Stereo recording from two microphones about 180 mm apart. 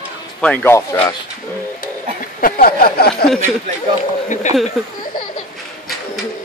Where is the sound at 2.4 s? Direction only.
55° left (ahead or behind).